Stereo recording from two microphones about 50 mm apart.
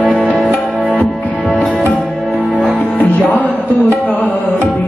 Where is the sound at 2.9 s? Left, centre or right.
Left.